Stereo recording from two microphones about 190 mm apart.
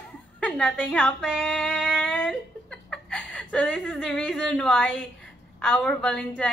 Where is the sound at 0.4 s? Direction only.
5° left (ahead or behind).